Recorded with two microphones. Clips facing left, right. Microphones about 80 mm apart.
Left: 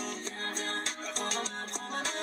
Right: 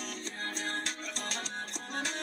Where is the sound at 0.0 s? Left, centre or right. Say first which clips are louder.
Left 2 dB; left.